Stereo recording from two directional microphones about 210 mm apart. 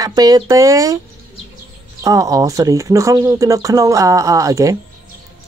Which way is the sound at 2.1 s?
15° right (ahead or behind).